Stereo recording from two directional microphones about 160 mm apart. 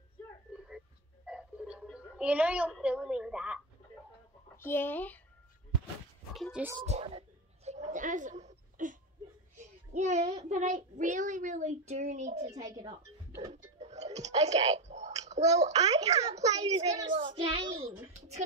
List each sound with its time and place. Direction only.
0.5 s a sound: 5° right (ahead or behind)
4.6 s speech: 15° left (ahead or behind)
6.3 s a child's voice: centre (ahead or behind)
6.9 s a sound: 40° right (ahead or behind)
9.9 s a child's voice: 45° right (ahead or behind)
12.5 s a child's voice: 25° right (ahead or behind)
13.5 s speech: 45° right (ahead or behind)
16.8 s a child's voice: 25° right (ahead or behind)